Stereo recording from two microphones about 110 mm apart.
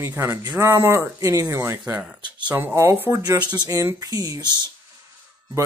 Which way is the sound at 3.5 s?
35° right (ahead or behind).